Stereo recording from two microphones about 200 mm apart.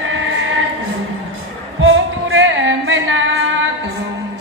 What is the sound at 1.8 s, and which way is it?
Singing, 80° right.